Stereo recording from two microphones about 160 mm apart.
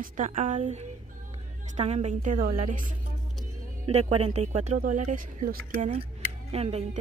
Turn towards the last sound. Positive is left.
turn(degrees=-40)  # may be behind; listen again after turning